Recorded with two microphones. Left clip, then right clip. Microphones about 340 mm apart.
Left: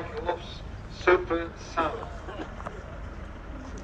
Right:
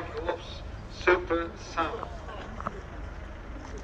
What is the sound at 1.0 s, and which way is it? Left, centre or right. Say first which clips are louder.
Speech: left 2 dB; centre.